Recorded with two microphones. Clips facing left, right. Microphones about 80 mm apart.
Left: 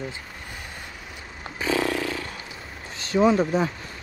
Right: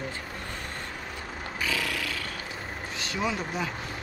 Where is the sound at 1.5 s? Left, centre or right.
Left.